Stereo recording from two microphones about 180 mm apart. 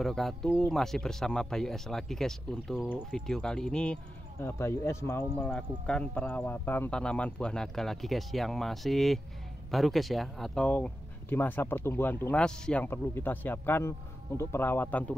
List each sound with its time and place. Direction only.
0.0 s speech: centre (ahead or behind)